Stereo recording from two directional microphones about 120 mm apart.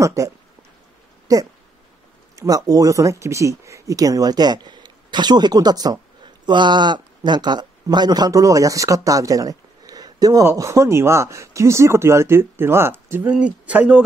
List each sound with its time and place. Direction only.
0.0 s speech: 25° right (ahead or behind)
1.2 s a sound: 30° right (ahead or behind)
2.3 s speech: 30° right (ahead or behind); by 14.0 s 10° right (ahead or behind)